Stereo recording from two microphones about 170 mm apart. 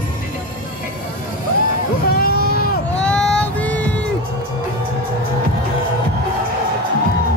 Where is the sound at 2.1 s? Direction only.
65° left (ahead or behind).